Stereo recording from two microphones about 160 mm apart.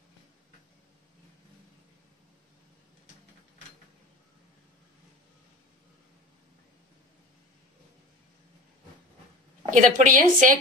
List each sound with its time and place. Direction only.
9.7 s a woman's voice: 55° right (ahead or behind)